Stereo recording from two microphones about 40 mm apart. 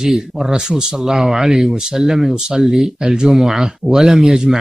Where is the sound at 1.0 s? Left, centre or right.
Centre.